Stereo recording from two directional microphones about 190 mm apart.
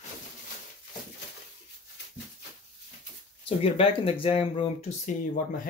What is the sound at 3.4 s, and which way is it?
Speech, 30° left (ahead or behind).